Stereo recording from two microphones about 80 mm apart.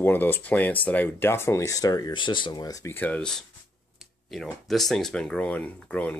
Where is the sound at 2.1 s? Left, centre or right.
Left.